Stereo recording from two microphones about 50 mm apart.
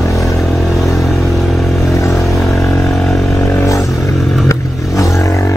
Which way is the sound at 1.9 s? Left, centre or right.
Left.